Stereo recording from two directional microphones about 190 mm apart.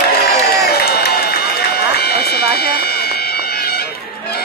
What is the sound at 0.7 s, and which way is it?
Run, 55° left (ahead or behind).